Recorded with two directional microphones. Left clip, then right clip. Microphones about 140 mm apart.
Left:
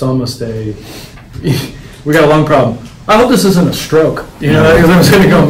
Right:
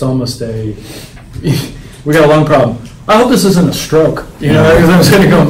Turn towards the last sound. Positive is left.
turn(degrees=0)  # may be behind; listen again after turning